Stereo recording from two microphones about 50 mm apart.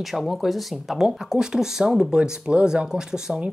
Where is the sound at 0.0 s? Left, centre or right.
Centre.